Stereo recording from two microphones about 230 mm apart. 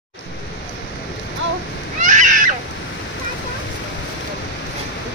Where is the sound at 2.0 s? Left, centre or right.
Right.